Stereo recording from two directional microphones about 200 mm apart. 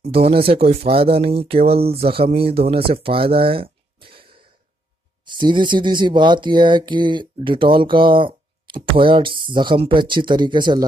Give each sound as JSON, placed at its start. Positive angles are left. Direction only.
{"t": 0.0, "sound": "speech", "side_deg": -30}